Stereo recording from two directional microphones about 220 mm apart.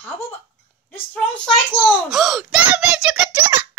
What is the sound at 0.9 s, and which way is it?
A child's voice, 5° left (ahead or behind).